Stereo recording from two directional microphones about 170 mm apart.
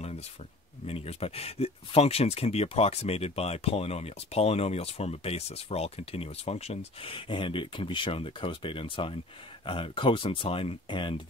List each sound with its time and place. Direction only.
0.8 s speech: 35° left (ahead or behind)